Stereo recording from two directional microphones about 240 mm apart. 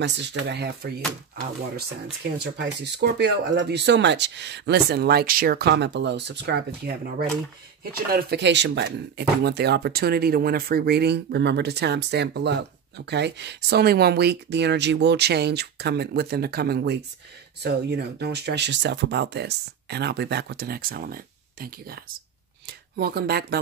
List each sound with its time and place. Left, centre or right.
0.0 s speech: right
2.3 s speech: right